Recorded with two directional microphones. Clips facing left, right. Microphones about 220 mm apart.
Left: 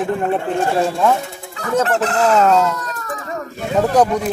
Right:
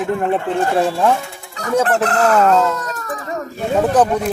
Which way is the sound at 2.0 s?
60° right (ahead or behind).